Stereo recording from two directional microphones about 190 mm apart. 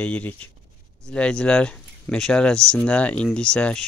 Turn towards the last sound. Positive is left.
turn(degrees=5)  # may be behind; listen again after turning